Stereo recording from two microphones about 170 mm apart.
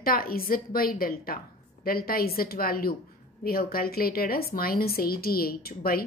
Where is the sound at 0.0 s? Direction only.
60° left (ahead or behind).